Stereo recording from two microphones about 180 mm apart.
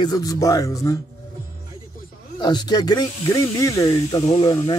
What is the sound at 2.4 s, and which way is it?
Speech, 25° left (ahead or behind).